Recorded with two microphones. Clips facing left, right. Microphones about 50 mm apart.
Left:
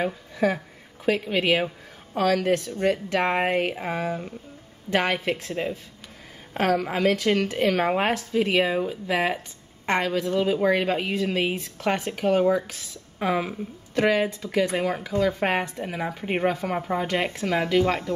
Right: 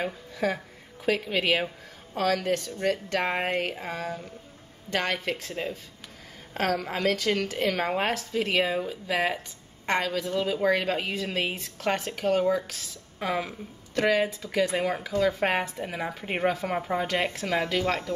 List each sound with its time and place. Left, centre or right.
0.0 s a woman's voice: centre